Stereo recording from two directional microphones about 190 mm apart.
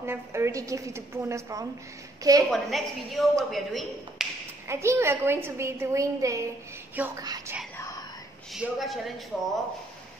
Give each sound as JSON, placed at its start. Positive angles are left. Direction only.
{"t": 0.0, "sound": "a woman's voice", "side_deg": -15}
{"t": 2.5, "sound": "speech", "side_deg": 0}
{"t": 4.6, "sound": "a woman's voice", "side_deg": -15}
{"t": 8.5, "sound": "speech", "side_deg": 0}